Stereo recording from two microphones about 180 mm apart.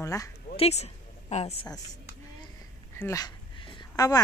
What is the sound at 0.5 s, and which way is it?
Speech, 35° left (ahead or behind).